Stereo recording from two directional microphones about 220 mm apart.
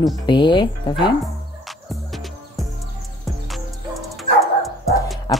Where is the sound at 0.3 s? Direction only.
20° left (ahead or behind).